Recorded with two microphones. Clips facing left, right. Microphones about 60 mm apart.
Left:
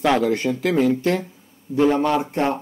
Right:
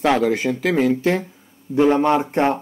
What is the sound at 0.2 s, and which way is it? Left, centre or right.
Speech, centre.